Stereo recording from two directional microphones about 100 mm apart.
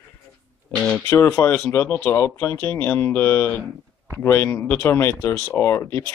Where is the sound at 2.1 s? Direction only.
30° left (ahead or behind).